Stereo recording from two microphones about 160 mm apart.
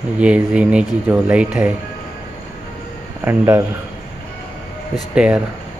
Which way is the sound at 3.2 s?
15° right (ahead or behind).